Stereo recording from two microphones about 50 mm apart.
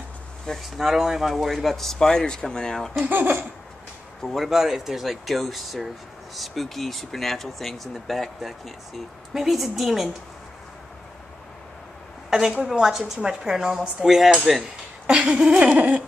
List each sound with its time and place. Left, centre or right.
0.6 s speech: centre
3.1 s speech: right
4.4 s speech: centre
12.3 s a woman's voice: centre
15.0 s a sound: right
15.7 s speech: right